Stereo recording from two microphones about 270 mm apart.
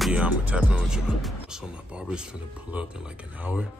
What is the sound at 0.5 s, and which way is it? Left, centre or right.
Speech, centre.